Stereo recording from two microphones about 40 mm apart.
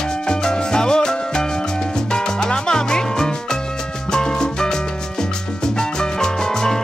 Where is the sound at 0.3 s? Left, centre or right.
Centre.